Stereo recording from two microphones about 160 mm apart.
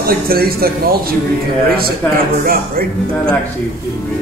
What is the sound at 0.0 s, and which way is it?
Speech, 70° right (ahead or behind).